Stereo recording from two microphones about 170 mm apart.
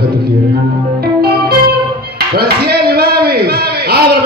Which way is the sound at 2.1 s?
70° right (ahead or behind).